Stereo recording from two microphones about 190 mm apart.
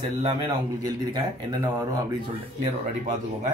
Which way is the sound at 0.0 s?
35° right (ahead or behind).